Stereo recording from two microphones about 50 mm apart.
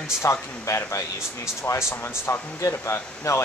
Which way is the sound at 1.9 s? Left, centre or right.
Left.